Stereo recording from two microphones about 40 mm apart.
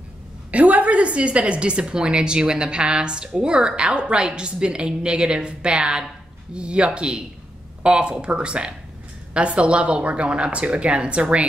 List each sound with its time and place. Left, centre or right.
0.5 s a woman's voice: right